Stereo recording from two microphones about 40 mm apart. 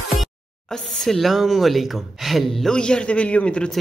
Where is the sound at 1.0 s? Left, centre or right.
Centre.